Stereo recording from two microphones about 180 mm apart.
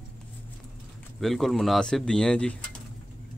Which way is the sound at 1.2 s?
Centre (ahead or behind).